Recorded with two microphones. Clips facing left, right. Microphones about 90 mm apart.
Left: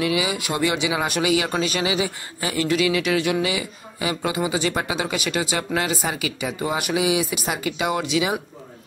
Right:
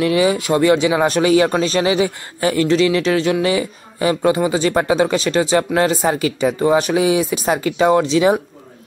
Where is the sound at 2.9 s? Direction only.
30° right (ahead or behind).